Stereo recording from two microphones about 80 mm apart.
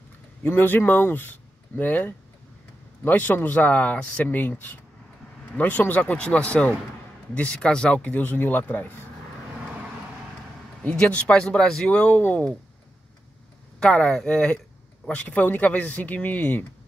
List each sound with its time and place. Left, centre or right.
0.4 s speech: left
10.8 s speech: centre
13.7 s speech: centre